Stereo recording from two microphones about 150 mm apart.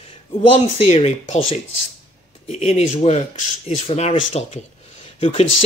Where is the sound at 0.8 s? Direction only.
45° left (ahead or behind).